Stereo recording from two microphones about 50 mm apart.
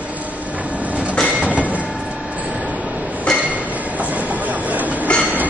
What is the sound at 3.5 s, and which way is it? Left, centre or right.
Train, right.